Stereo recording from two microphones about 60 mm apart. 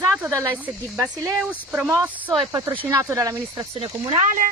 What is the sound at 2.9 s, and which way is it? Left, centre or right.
Speech, right.